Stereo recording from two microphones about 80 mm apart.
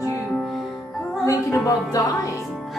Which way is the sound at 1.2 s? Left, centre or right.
Left.